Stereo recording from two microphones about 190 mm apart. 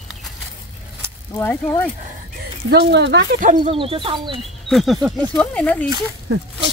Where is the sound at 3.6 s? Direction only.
30° right (ahead or behind).